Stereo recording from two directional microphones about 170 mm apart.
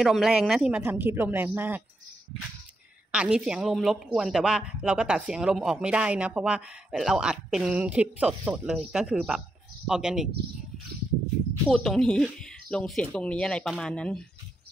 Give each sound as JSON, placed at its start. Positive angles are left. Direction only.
{"t": 0.0, "sound": "speech", "side_deg": 0}
{"t": 3.1, "sound": "a woman's voice", "side_deg": -5}
{"t": 11.7, "sound": "a woman's voice", "side_deg": 0}